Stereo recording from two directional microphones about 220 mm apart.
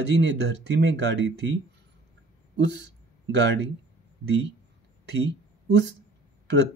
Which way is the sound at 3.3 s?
50° right (ahead or behind).